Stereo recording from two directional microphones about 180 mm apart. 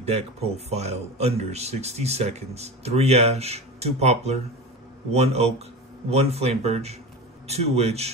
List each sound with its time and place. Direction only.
0.0 s speech: 35° right (ahead or behind)